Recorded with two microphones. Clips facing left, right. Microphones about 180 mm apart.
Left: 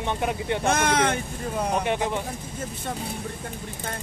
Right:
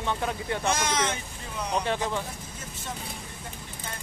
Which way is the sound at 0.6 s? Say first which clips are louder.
Left 5 dB; 60° left (ahead or behind).